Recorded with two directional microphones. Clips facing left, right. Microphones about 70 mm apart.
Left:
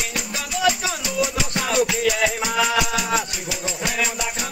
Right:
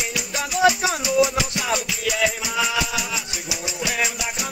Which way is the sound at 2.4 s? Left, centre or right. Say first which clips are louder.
Left 3 dB; left.